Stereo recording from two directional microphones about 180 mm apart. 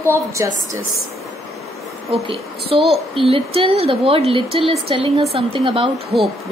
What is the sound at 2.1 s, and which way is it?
Speech, 30° right (ahead or behind).